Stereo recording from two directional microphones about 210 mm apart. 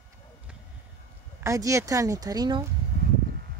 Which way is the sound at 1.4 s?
15° right (ahead or behind).